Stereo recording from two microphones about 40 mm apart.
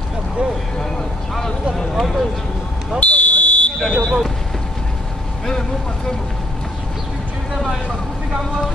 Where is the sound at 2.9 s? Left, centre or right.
Left.